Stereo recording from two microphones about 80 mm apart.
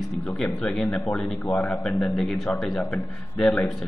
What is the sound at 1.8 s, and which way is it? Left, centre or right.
A man's voice, centre.